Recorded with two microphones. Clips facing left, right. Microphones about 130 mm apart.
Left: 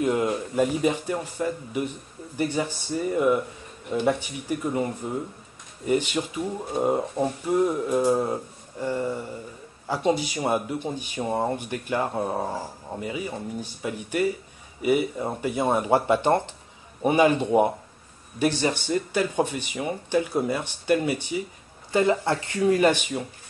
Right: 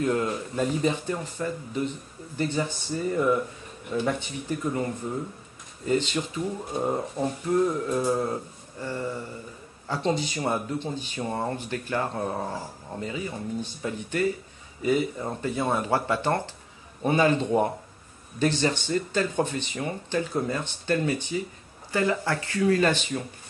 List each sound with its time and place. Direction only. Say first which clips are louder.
0.0 s speech: left 2 dB; 15° left (ahead or behind)
21.9 s speech: left 4 dB; 20° left (ahead or behind)